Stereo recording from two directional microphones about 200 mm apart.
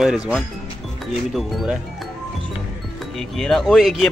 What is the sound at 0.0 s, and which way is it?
A man's voice, centre (ahead or behind).